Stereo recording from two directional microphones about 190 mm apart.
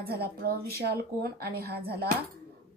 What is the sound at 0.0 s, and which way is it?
A woman's voice, 55° right (ahead or behind).